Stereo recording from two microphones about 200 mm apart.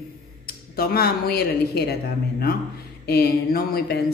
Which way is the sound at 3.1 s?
50° left (ahead or behind).